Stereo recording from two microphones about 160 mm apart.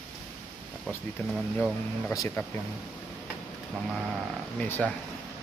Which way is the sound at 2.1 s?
20° left (ahead or behind).